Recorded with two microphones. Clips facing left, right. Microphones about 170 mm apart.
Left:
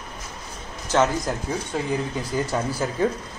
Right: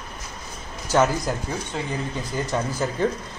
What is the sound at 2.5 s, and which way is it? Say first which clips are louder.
Speech: even; 10° left (ahead or behind).